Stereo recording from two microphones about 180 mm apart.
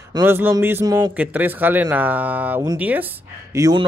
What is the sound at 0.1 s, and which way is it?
Speech, 10° right (ahead or behind).